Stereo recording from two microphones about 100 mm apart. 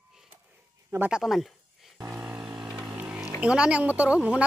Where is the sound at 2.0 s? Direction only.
15° right (ahead or behind).